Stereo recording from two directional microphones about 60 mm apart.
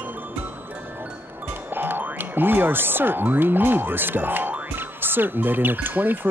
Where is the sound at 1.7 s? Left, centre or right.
Right.